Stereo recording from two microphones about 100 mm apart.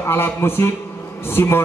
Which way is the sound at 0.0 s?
25° left (ahead or behind).